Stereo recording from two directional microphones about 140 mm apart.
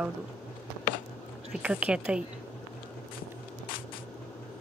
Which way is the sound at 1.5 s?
5° right (ahead or behind).